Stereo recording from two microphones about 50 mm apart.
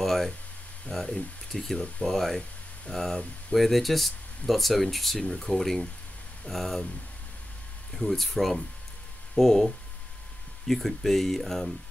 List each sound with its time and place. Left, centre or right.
0.0 s speech: centre
1.8 s speech: centre
2.1 s speech: centre
7.9 s speech: centre